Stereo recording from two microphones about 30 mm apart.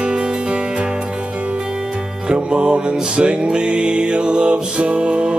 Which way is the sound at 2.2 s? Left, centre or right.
Right.